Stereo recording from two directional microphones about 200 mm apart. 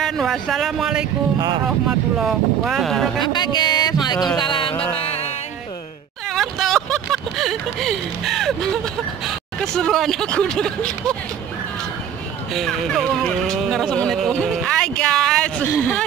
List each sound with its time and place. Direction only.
0.0 s speech: centre (ahead or behind)
3.2 s speech: 20° left (ahead or behind)
4.9 s music: 30° left (ahead or behind)
6.2 s speech: centre (ahead or behind)
12.5 s speech: centre (ahead or behind)